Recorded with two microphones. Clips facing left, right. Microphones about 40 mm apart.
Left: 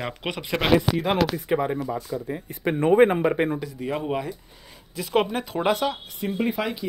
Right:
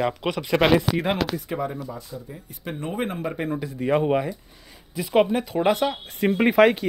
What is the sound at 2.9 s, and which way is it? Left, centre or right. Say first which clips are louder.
Speech: left 12 dB; left.